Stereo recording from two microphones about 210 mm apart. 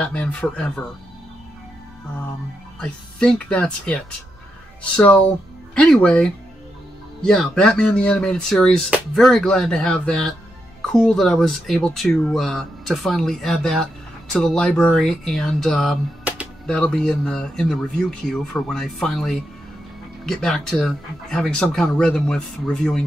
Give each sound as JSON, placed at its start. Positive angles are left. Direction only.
{"t": 0.0, "sound": "speech", "side_deg": 5}
{"t": 2.8, "sound": "speech", "side_deg": 5}